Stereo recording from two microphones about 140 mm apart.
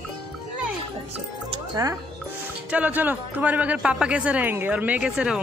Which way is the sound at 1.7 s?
25° right (ahead or behind).